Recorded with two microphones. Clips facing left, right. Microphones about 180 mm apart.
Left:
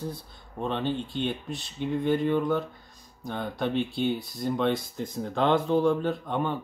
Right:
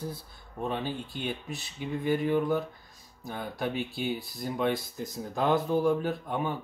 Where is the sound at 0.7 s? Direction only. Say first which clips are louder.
Left 4 dB; 10° right (ahead or behind).